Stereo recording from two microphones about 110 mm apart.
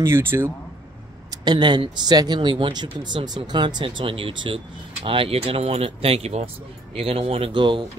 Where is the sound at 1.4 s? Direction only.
40° right (ahead or behind).